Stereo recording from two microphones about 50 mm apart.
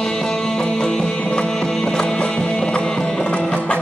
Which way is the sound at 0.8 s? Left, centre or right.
Centre.